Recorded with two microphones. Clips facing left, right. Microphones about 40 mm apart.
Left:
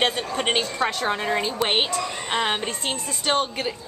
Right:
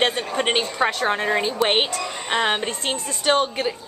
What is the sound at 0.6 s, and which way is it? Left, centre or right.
A woman's voice, right.